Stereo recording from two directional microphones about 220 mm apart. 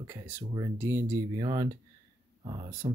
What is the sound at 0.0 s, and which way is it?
Speech, 10° right (ahead or behind).